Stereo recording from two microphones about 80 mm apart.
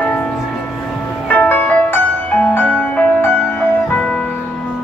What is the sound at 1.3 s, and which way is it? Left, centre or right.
Music, left.